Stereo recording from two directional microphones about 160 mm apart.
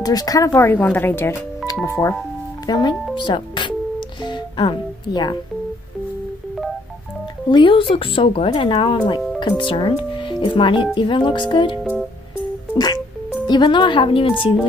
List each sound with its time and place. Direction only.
0.0 s speech: 25° left (ahead or behind)
4.2 s music: 30° left (ahead or behind)
7.5 s speech: 30° left (ahead or behind)
11.8 s music: 5° left (ahead or behind)
12.7 s music: 25° left (ahead or behind)
13.5 s speech: 30° left (ahead or behind)